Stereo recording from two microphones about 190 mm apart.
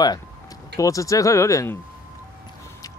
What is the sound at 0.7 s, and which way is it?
Speech, 15° left (ahead or behind).